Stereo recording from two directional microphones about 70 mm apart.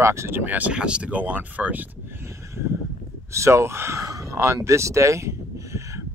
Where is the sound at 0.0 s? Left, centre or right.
Right.